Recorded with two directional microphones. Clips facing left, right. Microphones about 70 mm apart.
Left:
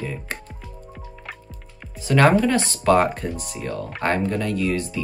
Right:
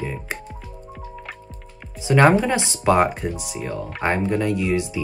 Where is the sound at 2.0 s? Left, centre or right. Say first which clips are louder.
Right 1 dB; centre.